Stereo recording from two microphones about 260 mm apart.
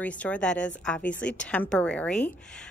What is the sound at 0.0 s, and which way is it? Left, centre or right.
A woman's voice, centre.